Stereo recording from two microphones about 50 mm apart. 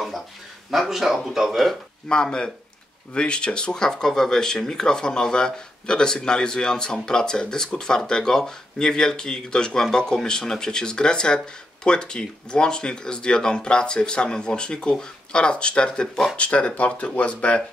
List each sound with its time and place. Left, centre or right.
0.7 s speech: centre
2.0 s speech: centre